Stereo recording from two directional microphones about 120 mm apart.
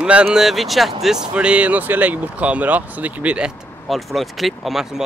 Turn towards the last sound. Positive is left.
turn(degrees=-5)  # may be behind; listen again after turning